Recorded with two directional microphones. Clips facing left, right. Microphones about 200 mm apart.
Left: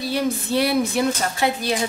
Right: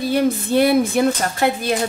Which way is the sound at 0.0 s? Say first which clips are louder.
Right 5 dB; 50° right (ahead or behind).